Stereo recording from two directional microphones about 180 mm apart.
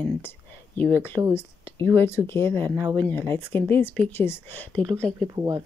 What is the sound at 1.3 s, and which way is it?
Speech, 15° left (ahead or behind).